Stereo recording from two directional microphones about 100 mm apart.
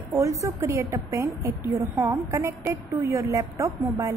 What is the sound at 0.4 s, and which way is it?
A woman's voice, 30° right (ahead or behind).